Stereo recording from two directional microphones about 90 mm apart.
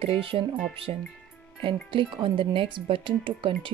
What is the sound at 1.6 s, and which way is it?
Speech, 65° right (ahead or behind).